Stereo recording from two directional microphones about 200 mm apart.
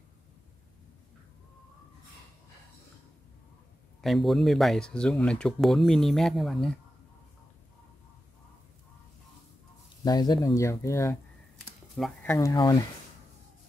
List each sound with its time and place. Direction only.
4.0 s speech: centre (ahead or behind)
10.0 s speech: 20° left (ahead or behind)